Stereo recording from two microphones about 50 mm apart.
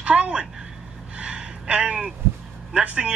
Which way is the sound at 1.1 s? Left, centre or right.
Right.